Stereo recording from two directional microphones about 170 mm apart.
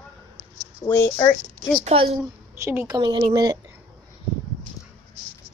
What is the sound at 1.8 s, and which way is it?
Speech, 35° right (ahead or behind).